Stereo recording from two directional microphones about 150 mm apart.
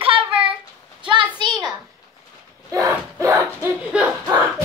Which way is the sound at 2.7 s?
20° right (ahead or behind).